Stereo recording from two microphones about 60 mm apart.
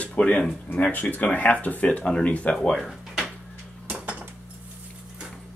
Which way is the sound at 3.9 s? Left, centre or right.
Right.